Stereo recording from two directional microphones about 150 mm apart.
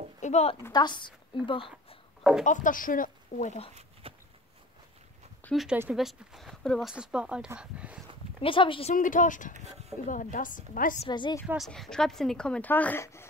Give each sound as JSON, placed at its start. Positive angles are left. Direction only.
{"t": 0.2, "sound": "a woman's voice", "side_deg": 45}
{"t": 0.7, "sound": "a woman's voice", "side_deg": 30}
{"t": 2.4, "sound": "speech", "side_deg": 60}
{"t": 4.0, "sound": "a sound", "side_deg": -40}
{"t": 5.4, "sound": "speech", "side_deg": 0}
{"t": 8.4, "sound": "speech", "side_deg": 35}
{"t": 8.9, "sound": "speech", "side_deg": 60}
{"t": 11.1, "sound": "speech", "side_deg": 30}
{"t": 11.4, "sound": "speech", "side_deg": 0}